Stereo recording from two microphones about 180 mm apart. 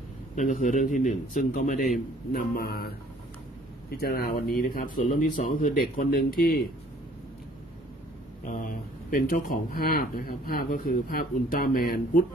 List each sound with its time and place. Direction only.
0.4 s a man's voice: 45° left (ahead or behind)
3.9 s a man's voice: 60° left (ahead or behind)
8.5 s speech: 50° left (ahead or behind)